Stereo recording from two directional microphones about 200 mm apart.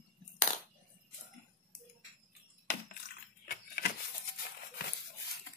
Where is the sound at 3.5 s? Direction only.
50° left (ahead or behind).